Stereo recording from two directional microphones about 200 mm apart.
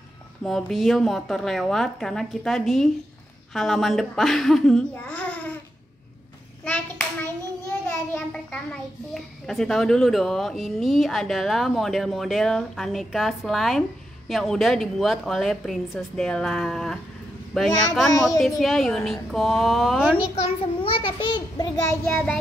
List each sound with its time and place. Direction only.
0.4 s speech: centre (ahead or behind)
8.1 s speech: 5° left (ahead or behind)
20.3 s a child's voice: 30° left (ahead or behind); by 22.4 s 5° left (ahead or behind)